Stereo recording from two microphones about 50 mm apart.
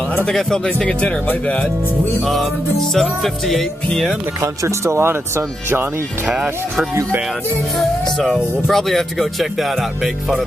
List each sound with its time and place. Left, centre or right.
0.3 s speech: centre
2.9 s speech: centre
4.4 s speech: right
7.8 s speech: centre